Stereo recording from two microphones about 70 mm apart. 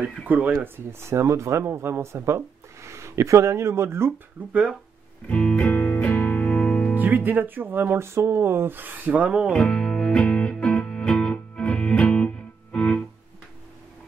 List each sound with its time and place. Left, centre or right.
0.3 s speech: right
0.9 s speech: right
4.5 s speech: centre
5.3 s music: centre
7.0 s speech: right
9.5 s music: centre